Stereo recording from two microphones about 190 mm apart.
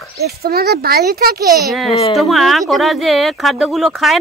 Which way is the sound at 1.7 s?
Centre (ahead or behind).